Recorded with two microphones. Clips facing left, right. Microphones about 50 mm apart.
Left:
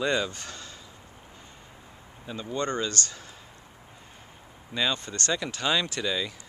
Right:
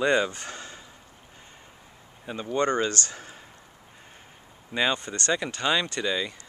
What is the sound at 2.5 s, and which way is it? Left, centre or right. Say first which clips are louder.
Speech: right 5 dB; centre.